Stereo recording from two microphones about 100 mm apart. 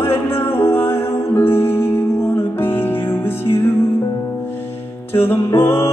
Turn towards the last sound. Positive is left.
turn(degrees=25)  # may be behind; listen again after turning